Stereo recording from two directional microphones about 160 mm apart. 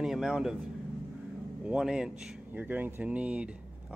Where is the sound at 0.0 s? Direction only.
5° right (ahead or behind).